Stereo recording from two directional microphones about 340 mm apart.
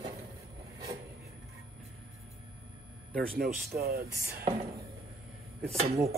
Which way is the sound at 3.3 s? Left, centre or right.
Right.